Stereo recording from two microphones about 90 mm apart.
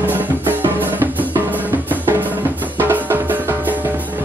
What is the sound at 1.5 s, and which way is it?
Drum, 20° right (ahead or behind).